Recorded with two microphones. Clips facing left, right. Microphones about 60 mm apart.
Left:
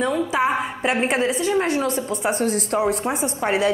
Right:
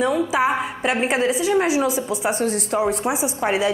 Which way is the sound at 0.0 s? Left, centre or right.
Centre.